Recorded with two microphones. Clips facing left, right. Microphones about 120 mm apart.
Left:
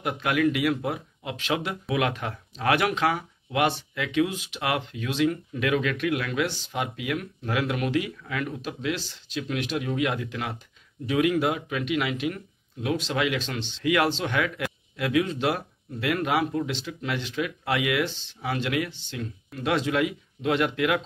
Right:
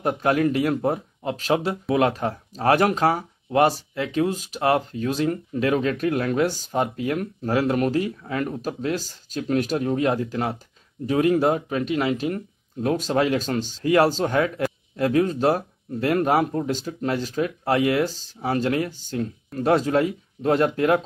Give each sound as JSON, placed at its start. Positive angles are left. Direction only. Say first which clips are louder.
{"t": 0.0, "sound": "speech", "louder": "right 4 dB", "side_deg": -40}